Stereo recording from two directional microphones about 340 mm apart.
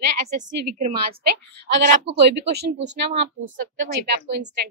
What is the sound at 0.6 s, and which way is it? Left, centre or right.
A woman's voice, right.